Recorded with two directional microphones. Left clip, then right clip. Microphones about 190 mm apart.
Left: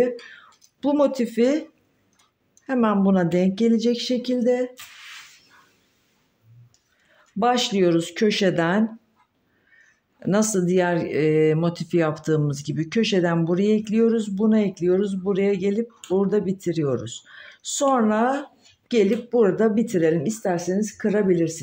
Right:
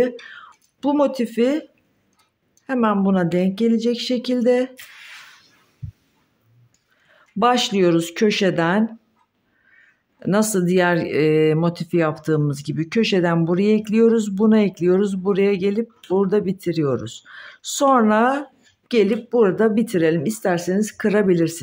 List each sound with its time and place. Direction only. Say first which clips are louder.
0.3 s speech: right 6 dB; 15° right (ahead or behind)
7.1 s speech: right 3 dB; 20° right (ahead or behind)
10.1 s a sound: right 2 dB; 10° right (ahead or behind)
10.5 s speech: right 3 dB; 20° right (ahead or behind)